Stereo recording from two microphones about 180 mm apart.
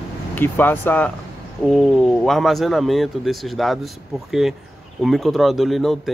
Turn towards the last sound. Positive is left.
turn(degrees=0)  # may be behind; listen again after turning